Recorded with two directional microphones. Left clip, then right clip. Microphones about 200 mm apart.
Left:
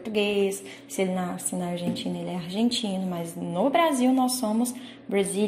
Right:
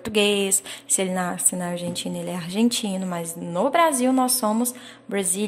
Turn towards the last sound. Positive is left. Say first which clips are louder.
# left 1 dB
turn(degrees=-35)  # may be behind; listen again after turning